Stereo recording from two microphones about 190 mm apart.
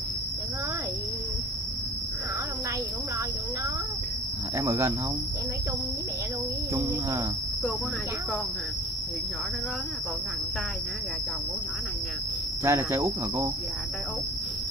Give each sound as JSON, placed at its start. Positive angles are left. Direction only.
{"t": 4.6, "sound": "speech", "side_deg": -15}
{"t": 6.7, "sound": "speech", "side_deg": -15}
{"t": 12.6, "sound": "speech", "side_deg": -15}